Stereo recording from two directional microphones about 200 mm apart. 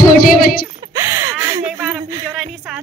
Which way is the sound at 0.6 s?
15° right (ahead or behind).